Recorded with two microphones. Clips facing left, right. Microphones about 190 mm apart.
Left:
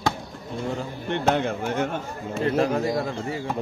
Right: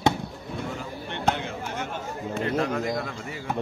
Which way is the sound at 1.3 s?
55° left (ahead or behind).